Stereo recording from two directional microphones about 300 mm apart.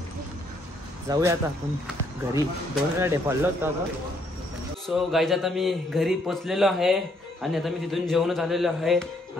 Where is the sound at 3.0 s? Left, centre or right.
Centre.